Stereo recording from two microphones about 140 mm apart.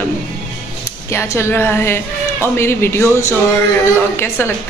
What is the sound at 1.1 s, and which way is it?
A woman's voice, 20° left (ahead or behind).